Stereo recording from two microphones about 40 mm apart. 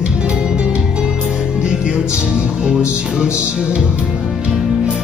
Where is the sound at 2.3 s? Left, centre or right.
Right.